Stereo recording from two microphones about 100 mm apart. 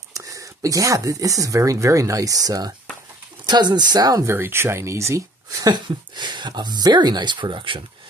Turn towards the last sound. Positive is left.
turn(degrees=-55)  # may be behind; listen again after turning